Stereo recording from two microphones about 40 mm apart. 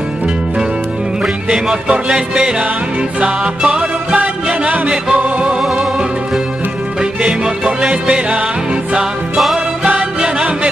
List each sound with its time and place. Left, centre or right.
1.7 s music: right
7.0 s music: right
9.8 s music: right